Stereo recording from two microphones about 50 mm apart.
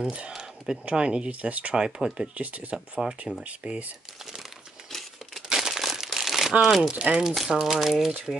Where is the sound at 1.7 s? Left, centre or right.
Centre.